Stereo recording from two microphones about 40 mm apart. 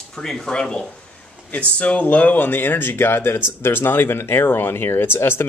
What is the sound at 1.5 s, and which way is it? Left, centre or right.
Speech, left.